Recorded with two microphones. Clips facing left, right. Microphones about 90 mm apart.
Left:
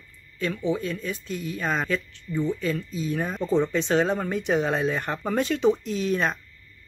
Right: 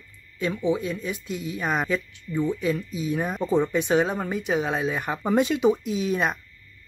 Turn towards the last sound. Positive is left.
turn(degrees=-10)  # may be behind; listen again after turning